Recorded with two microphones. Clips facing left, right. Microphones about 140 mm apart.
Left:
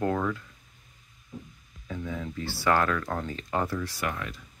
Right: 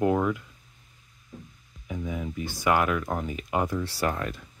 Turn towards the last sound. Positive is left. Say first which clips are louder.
# right 4 dB
turn(degrees=-35)  # may be behind; listen again after turning